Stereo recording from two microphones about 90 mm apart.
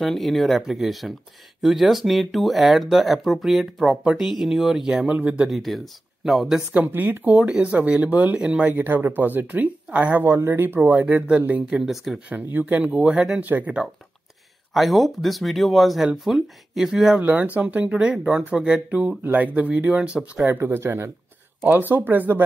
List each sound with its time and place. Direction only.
0.0 s speech: centre (ahead or behind)
5.0 s speech: 15° right (ahead or behind)
5.4 s speech: centre (ahead or behind)
6.7 s speech: 20° right (ahead or behind); by 12.2 s centre (ahead or behind)
12.5 s speech: 20° right (ahead or behind)
14.7 s speech: centre (ahead or behind)
17.2 s speech: 20° right (ahead or behind)
20.4 s speech: 25° right (ahead or behind)